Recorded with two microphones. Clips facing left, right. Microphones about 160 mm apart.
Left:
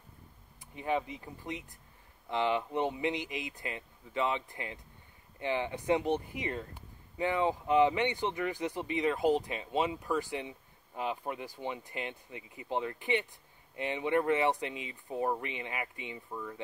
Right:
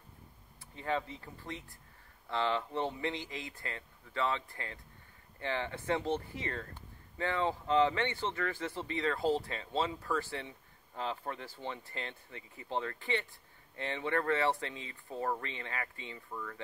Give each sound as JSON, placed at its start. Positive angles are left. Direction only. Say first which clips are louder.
{"t": 0.7, "sound": "speech", "louder": "left 3 dB", "side_deg": 15}